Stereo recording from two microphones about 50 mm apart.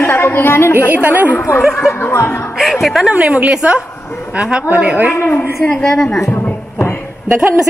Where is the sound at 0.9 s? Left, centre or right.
Right.